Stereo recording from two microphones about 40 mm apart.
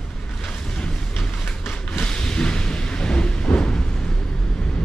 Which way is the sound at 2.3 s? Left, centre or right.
Left.